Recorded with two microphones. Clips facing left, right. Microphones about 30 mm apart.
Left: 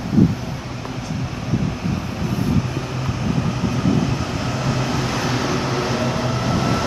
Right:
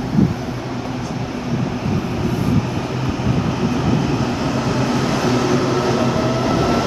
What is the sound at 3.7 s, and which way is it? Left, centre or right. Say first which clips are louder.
Vehicle: even; centre.